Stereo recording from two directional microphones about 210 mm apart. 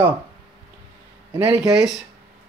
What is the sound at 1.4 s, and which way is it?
Speech, 5° right (ahead or behind).